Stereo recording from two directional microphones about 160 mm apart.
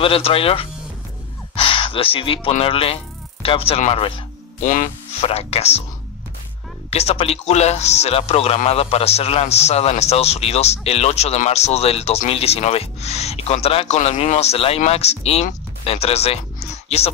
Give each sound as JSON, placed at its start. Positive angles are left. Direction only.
{"t": 0.0, "sound": "a man's voice", "side_deg": 35}
{"t": 1.5, "sound": "gasp", "side_deg": 35}
{"t": 2.5, "sound": "a man's voice", "side_deg": 35}
{"t": 4.6, "sound": "speech", "side_deg": 55}
{"t": 5.2, "sound": "a man's voice", "side_deg": 40}
{"t": 6.9, "sound": "a man's voice", "side_deg": 40}